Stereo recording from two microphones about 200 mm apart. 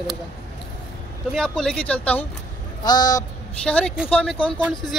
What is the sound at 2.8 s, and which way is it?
Speech, 20° left (ahead or behind).